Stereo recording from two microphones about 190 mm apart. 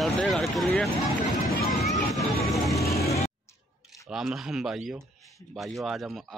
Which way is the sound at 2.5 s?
15° left (ahead or behind).